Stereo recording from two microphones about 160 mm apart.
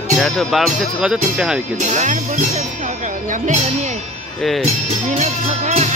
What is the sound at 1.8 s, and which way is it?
Speech, 50° right (ahead or behind).